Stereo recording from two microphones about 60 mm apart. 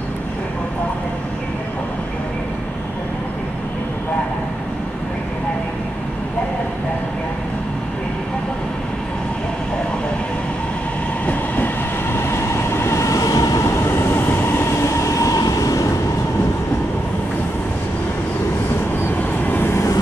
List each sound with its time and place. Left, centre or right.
11.2 s train: left
13.7 s train: left
19.4 s vehicle: left